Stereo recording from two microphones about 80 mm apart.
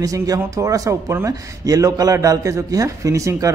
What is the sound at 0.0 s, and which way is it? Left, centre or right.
Speech, right.